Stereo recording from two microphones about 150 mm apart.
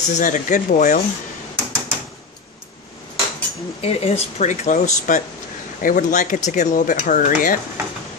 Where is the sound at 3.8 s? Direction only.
45° left (ahead or behind); by 7.6 s 65° left (ahead or behind).